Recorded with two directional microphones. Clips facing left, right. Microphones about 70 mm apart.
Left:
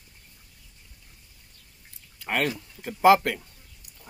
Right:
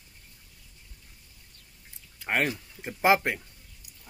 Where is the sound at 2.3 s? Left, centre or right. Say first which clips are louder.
Left 1 dB; right.